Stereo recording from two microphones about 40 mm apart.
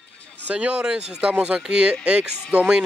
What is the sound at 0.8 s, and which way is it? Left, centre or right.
Speech, right.